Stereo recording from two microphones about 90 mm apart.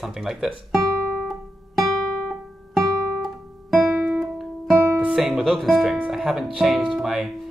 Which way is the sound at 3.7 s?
15° right (ahead or behind).